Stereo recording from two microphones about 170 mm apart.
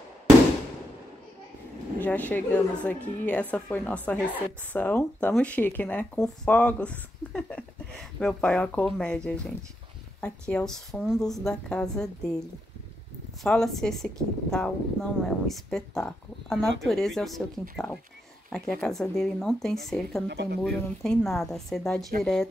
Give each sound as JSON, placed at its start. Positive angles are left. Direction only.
{"t": 2.0, "sound": "speech", "side_deg": 10}
{"t": 13.4, "sound": "speech", "side_deg": 0}
{"t": 20.2, "sound": "speech", "side_deg": -75}
{"t": 20.6, "sound": "speech", "side_deg": 5}